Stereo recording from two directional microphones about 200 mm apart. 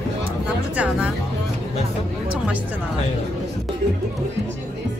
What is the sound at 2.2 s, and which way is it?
Music, 5° right (ahead or behind).